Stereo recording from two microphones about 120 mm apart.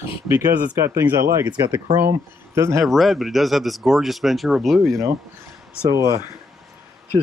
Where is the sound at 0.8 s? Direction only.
25° right (ahead or behind).